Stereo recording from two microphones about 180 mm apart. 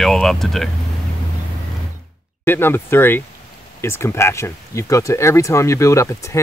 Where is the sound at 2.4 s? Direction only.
10° left (ahead or behind).